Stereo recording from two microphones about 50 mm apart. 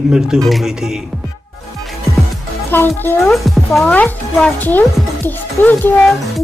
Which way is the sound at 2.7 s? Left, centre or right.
Left.